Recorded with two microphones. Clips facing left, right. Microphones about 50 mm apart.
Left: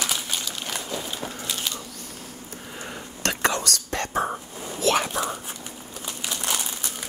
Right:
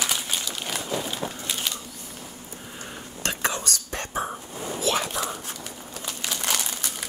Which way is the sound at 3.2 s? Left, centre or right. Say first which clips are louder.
Left 3 dB; left.